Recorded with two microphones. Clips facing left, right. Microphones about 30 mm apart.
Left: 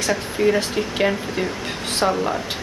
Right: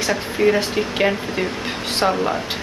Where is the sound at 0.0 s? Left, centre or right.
Centre.